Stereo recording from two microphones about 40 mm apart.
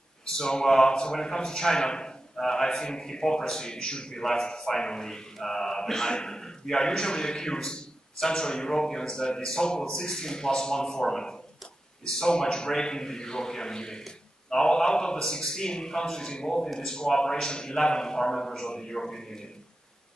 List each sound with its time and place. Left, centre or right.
0.4 s a man's voice: centre